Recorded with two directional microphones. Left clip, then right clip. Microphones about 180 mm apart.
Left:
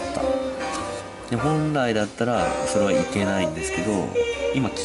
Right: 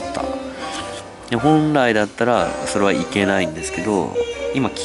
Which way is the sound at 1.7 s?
10° right (ahead or behind).